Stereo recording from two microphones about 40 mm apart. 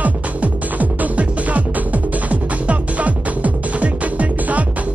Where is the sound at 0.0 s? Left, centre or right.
Right.